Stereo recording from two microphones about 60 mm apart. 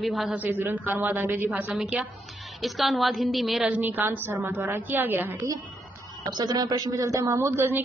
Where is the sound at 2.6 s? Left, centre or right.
Centre.